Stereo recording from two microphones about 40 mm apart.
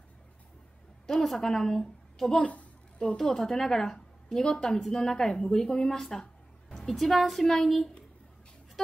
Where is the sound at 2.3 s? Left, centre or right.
Left.